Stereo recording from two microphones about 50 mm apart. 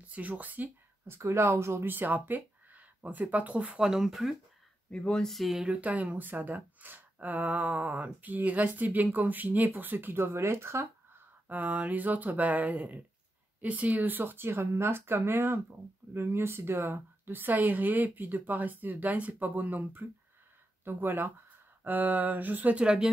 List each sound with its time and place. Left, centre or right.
0.0 s speech: right
1.0 s speech: right
1.9 s speech: right; by 4.1 s centre
4.1 s speech: centre
4.9 s speech: centre
5.3 s speech: centre
5.8 s speech: right
11.4 s speech: right
22.8 s speech: centre